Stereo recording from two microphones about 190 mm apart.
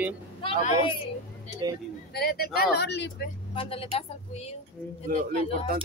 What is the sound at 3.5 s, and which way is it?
Speech, 30° left (ahead or behind).